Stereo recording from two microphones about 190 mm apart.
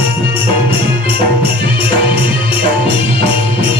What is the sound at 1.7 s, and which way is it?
Music, 25° left (ahead or behind).